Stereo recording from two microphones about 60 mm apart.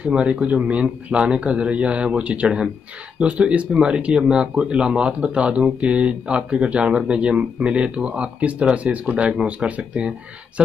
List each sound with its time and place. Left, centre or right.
0.0 s speech: centre